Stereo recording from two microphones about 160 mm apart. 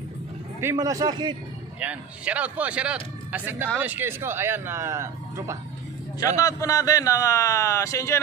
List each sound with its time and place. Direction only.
0.6 s speech: 20° right (ahead or behind)
1.8 s a man's voice: 10° right (ahead or behind)
6.1 s a man's voice: 20° left (ahead or behind)